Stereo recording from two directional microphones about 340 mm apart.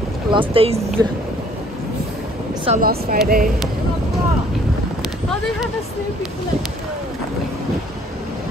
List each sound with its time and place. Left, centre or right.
0.3 s speech: centre
2.6 s speech: right